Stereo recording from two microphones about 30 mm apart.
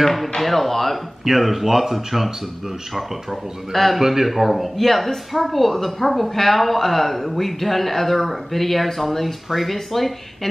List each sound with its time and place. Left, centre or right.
0.0 s a woman's voice: centre
1.2 s a woman's voice: centre
3.7 s a woman's voice: centre
4.0 s a man's voice: centre